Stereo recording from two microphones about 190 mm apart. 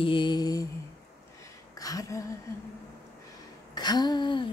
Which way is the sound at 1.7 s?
20° left (ahead or behind).